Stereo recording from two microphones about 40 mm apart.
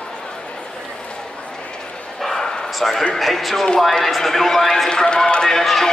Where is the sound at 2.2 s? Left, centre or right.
Centre.